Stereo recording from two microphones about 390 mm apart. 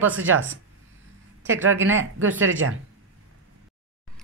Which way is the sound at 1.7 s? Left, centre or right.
Right.